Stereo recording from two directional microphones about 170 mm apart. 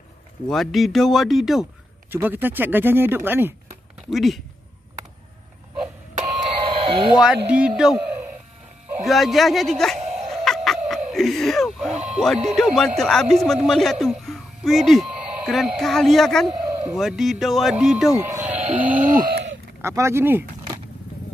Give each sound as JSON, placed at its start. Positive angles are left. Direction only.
{"t": 0.5, "sound": "speech", "side_deg": 0}
{"t": 2.0, "sound": "speech", "side_deg": -10}
{"t": 4.1, "sound": "speech", "side_deg": 0}
{"t": 6.1, "sound": "doorbell", "side_deg": -35}
{"t": 7.2, "sound": "speech", "side_deg": -5}
{"t": 9.0, "sound": "a sound", "side_deg": 0}
{"t": 11.9, "sound": "speech", "side_deg": -40}
{"t": 12.5, "sound": "speech", "side_deg": 0}